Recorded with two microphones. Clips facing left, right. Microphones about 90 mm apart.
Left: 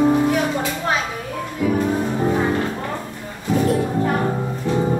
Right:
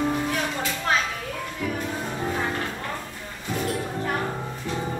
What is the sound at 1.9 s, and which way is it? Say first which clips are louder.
Music: left 9 dB; 20° left (ahead or behind).